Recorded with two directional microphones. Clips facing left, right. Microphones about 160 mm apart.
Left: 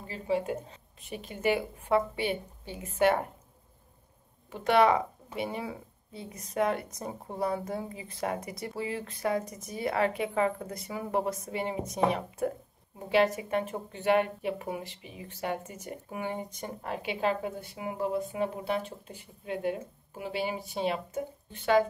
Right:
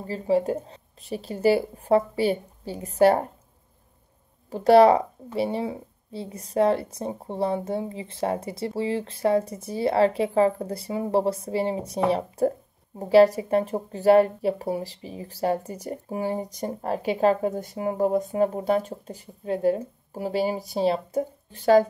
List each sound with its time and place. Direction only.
0.0 s speech: 40° right (ahead or behind)
4.5 s speech: 35° right (ahead or behind)